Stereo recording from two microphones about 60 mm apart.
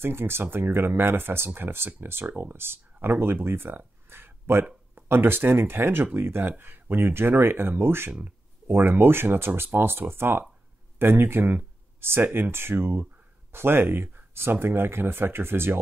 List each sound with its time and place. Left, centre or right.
0.0 s speech: right